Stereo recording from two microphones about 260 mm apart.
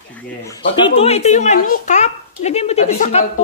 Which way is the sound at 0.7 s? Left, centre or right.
Centre.